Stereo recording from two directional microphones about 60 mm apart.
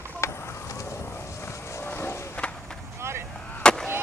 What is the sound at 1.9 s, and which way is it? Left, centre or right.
Skateboard, left.